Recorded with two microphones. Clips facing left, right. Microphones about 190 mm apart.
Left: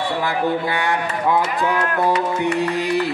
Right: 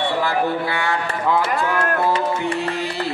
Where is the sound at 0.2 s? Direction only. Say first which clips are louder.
Even; 20° left (ahead or behind).